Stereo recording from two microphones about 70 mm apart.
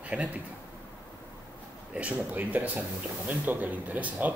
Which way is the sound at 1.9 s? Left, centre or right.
Right.